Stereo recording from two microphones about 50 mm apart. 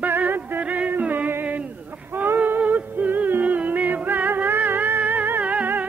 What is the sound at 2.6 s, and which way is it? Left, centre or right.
Music, right.